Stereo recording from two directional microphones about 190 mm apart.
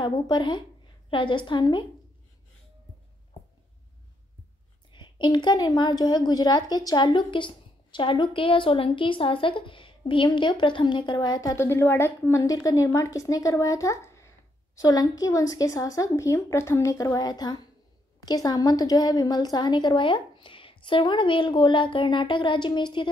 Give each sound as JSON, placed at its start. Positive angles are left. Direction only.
{"t": 0.0, "sound": "a woman's voice", "side_deg": 25}
{"t": 4.9, "sound": "a woman's voice", "side_deg": 25}